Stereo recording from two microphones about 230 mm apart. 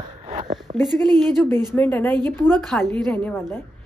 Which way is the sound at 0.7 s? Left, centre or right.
Right.